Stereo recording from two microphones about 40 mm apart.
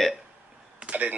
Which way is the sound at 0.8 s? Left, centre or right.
Right.